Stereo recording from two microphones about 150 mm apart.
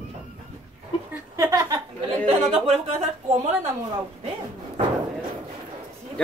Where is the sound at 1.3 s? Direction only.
20° right (ahead or behind).